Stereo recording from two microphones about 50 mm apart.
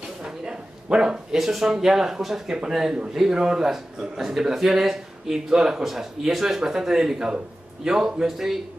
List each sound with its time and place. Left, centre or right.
0.2 s bow-wow: centre
1.3 s a man's voice: centre